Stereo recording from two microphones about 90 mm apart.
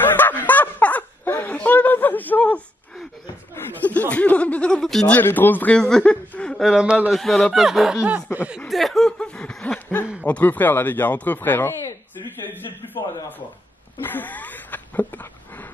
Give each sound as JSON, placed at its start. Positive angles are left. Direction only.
{"t": 0.0, "sound": "snicker", "side_deg": 20}
{"t": 3.5, "sound": "a sound", "side_deg": 20}
{"t": 4.1, "sound": "snicker", "side_deg": 15}
{"t": 5.1, "sound": "speech", "side_deg": 20}
{"t": 5.8, "sound": "chuckle", "side_deg": 10}
{"t": 6.7, "sound": "a man's voice", "side_deg": -10}
{"t": 7.1, "sound": "speech", "side_deg": 0}
{"t": 8.5, "sound": "snicker", "side_deg": 0}
{"t": 10.2, "sound": "speech", "side_deg": 15}
{"t": 12.3, "sound": "a sound", "side_deg": 20}
{"t": 14.0, "sound": "a sound", "side_deg": 20}